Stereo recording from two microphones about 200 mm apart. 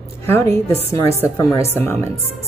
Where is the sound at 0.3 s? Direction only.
10° left (ahead or behind).